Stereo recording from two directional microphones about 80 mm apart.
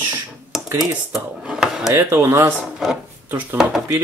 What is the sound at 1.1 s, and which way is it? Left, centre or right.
Speech, centre.